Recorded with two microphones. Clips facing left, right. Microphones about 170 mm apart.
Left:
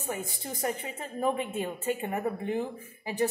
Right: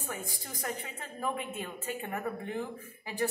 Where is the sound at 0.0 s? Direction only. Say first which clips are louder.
Left 5 dB; 25° left (ahead or behind).